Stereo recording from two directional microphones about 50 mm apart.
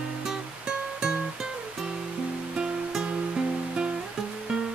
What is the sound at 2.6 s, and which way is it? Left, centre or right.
Music, right.